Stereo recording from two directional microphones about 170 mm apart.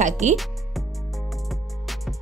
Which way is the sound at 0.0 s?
45° right (ahead or behind).